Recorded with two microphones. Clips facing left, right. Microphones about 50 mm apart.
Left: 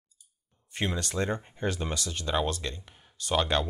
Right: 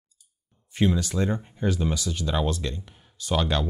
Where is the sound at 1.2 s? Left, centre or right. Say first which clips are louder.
Right 1 dB; centre.